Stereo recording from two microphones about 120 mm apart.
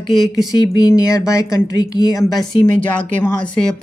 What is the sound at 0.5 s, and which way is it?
Speech, 30° left (ahead or behind).